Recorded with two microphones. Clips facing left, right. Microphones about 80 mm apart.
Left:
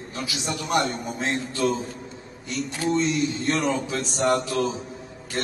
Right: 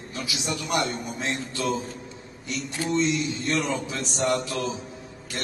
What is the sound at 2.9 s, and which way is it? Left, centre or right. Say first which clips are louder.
A man's voice: left 2 dB; left.